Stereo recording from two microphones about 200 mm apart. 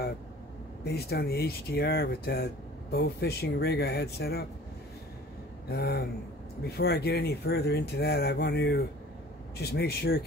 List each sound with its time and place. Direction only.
0.8 s speech: 55° left (ahead or behind)
5.7 s speech: 55° left (ahead or behind)